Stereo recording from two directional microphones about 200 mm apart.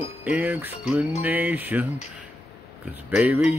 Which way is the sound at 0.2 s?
10° right (ahead or behind).